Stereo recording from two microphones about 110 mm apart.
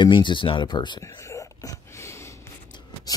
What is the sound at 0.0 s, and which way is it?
Speech, 45° left (ahead or behind).